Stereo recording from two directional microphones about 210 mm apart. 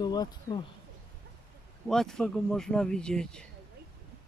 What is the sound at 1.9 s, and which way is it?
Speech, centre (ahead or behind).